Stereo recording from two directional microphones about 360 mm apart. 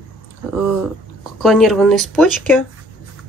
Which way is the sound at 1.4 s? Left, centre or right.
Centre.